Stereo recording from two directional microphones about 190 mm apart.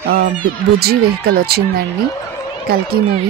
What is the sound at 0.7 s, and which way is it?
Speech, 55° right (ahead or behind).